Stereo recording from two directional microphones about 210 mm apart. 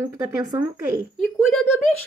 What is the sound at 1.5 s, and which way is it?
Speech, 5° left (ahead or behind).